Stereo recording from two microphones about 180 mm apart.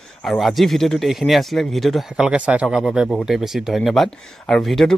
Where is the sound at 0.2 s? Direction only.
Centre (ahead or behind).